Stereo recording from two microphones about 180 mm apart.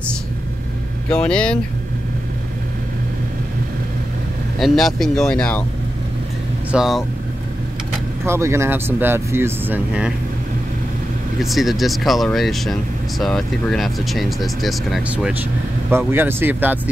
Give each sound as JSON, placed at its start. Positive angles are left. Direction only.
{"t": 1.1, "sound": "speech", "side_deg": 5}
{"t": 4.6, "sound": "speech", "side_deg": 0}
{"t": 6.7, "sound": "speech", "side_deg": 0}
{"t": 8.3, "sound": "speech", "side_deg": -15}
{"t": 11.4, "sound": "speech", "side_deg": 0}
{"t": 15.9, "sound": "speech", "side_deg": -10}